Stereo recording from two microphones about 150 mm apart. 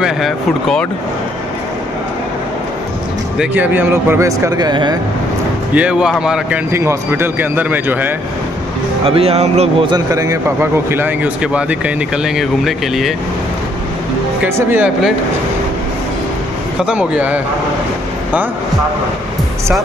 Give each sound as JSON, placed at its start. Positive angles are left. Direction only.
{"t": 0.0, "sound": "speech", "side_deg": 0}
{"t": 3.3, "sound": "speech", "side_deg": -10}
{"t": 5.8, "sound": "speech", "side_deg": -5}
{"t": 6.7, "sound": "a man's voice", "side_deg": -15}
{"t": 9.0, "sound": "speech", "side_deg": -40}
{"t": 9.8, "sound": "a man's voice", "side_deg": -25}
{"t": 14.4, "sound": "a man's voice", "side_deg": -10}
{"t": 16.8, "sound": "a man's voice", "side_deg": -10}